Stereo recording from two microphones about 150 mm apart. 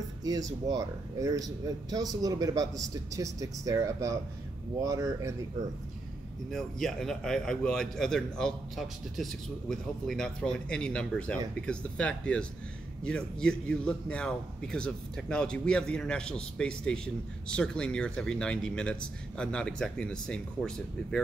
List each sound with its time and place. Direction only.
0.2 s speech: 25° right (ahead or behind)
6.5 s a man's voice: 5° left (ahead or behind)